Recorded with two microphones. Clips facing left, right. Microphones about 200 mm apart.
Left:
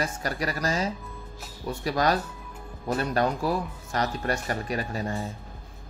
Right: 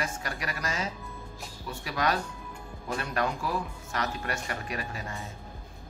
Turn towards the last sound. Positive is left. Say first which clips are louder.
# left 7 dB
turn(degrees=35)  # may be behind; listen again after turning